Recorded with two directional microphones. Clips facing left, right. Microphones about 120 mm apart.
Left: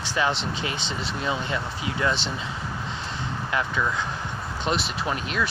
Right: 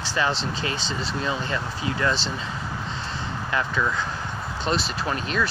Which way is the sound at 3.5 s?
10° left (ahead or behind).